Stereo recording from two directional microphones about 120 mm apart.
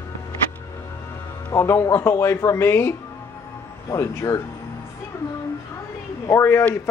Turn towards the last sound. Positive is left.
turn(degrees=20)  # may be behind; listen again after turning